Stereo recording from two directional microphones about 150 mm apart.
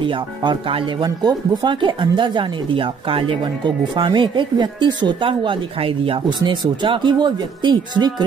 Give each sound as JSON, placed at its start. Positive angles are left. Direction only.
{"t": 0.0, "sound": "speech", "side_deg": -35}